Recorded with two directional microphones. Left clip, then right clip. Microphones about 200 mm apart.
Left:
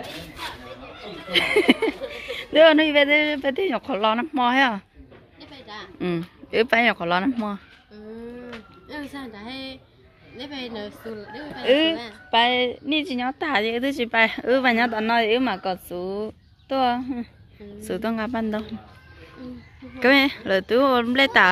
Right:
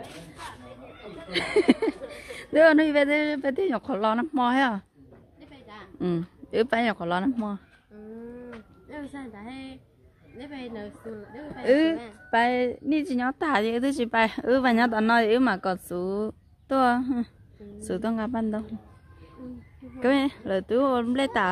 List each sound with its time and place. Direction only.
1.3 s speech: 15° right (ahead or behind)
5.9 s speech: 15° right (ahead or behind)
8.5 s music: 5° right (ahead or behind)
10.3 s a woman's voice: centre (ahead or behind)
13.0 s a woman's voice: 35° right (ahead or behind)
17.7 s speech: 20° right (ahead or behind)
20.0 s speech: 10° right (ahead or behind)